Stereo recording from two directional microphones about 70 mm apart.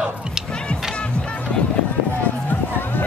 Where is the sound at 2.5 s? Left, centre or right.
Left.